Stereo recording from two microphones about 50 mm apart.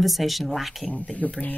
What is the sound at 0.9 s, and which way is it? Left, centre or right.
Speech, left.